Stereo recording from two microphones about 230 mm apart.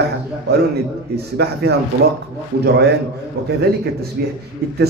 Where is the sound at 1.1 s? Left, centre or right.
Right.